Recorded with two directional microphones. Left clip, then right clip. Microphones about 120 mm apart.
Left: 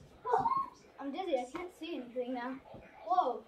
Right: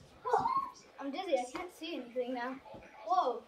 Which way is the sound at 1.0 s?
5° left (ahead or behind).